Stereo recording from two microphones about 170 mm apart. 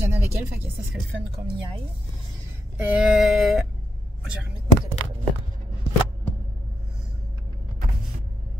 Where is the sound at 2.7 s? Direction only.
5° right (ahead or behind).